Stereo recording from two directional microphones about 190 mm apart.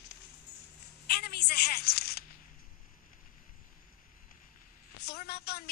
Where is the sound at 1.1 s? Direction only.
55° left (ahead or behind).